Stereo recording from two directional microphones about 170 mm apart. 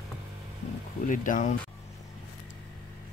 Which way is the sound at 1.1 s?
50° left (ahead or behind).